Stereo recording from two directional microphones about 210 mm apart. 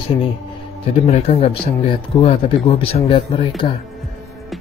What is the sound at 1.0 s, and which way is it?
A man's voice, 30° left (ahead or behind).